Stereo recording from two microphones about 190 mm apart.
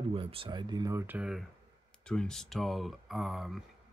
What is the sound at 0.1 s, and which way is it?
Speech, 30° right (ahead or behind).